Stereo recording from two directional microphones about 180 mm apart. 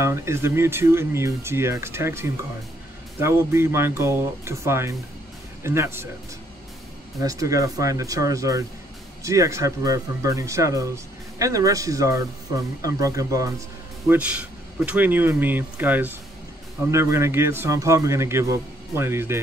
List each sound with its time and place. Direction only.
0.0 s speech: 15° right (ahead or behind)
7.2 s speech: 20° right (ahead or behind)
14.0 s speech: 10° right (ahead or behind)